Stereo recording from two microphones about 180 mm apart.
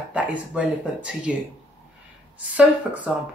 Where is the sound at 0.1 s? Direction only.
5° right (ahead or behind).